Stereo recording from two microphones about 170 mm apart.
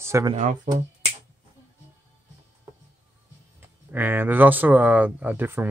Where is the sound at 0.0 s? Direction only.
15° right (ahead or behind).